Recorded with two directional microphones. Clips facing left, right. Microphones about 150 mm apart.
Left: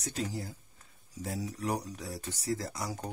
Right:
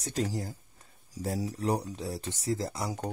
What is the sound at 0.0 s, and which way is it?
Speech, 40° right (ahead or behind).